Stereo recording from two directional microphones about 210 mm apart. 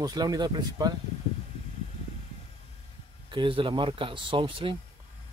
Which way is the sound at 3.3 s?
25° right (ahead or behind).